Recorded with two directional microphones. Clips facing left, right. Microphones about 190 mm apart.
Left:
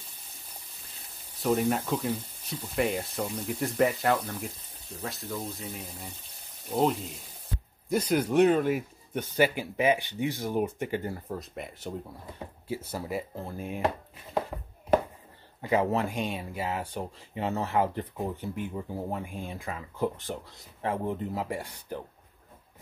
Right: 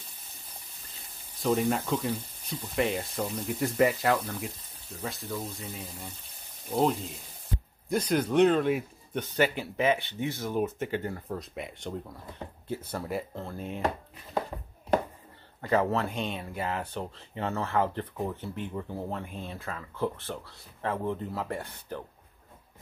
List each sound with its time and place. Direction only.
1.4 s speech: 5° left (ahead or behind)
7.9 s speech: 5° left (ahead or behind)
15.6 s speech: 15° left (ahead or behind)